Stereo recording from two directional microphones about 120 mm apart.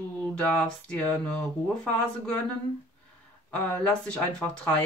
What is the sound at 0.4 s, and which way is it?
Speech, 10° left (ahead or behind).